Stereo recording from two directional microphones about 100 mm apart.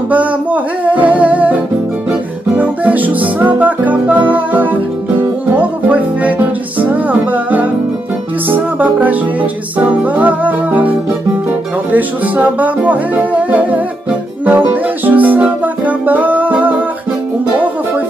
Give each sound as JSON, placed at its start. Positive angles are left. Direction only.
{"t": 0.1, "sound": "music", "side_deg": -15}